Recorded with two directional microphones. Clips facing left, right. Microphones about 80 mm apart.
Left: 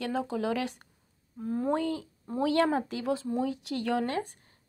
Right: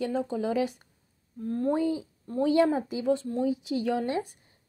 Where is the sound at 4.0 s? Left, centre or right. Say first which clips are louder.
Right 1 dB; left.